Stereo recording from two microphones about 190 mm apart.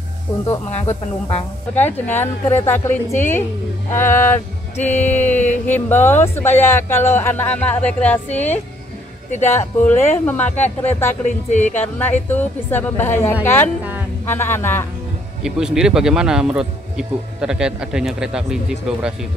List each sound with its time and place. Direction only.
0.7 s speech: 35° left (ahead or behind)
1.8 s speech: 10° left (ahead or behind)
5.4 s speech: 10° left (ahead or behind)
11.2 s speech: 40° left (ahead or behind)
12.0 s speech: 10° left (ahead or behind)
15.4 s speech: 5° right (ahead or behind)